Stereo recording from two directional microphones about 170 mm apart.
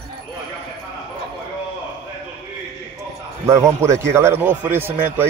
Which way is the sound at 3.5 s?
15° right (ahead or behind).